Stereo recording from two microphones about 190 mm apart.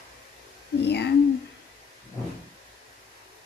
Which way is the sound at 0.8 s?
60° left (ahead or behind).